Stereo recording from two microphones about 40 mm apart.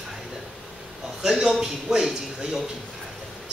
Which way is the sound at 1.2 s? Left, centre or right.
Centre.